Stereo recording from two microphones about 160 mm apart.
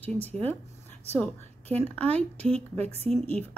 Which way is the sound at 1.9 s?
10° left (ahead or behind).